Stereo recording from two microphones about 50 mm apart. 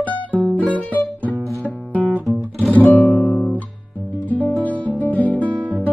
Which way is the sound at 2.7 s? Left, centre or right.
Left.